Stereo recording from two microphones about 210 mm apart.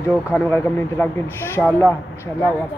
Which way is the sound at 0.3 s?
10° left (ahead or behind).